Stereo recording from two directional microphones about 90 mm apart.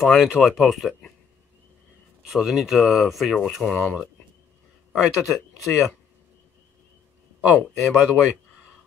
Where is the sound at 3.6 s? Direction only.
15° left (ahead or behind).